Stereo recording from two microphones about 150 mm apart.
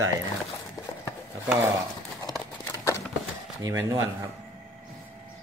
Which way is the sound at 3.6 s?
20° right (ahead or behind).